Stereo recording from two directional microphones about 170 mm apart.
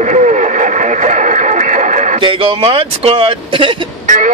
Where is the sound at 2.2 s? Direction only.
30° right (ahead or behind).